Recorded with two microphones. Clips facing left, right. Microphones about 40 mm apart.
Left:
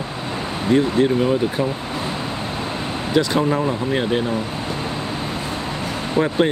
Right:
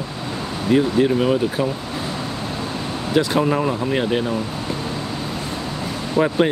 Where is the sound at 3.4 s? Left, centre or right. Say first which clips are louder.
Even; centre.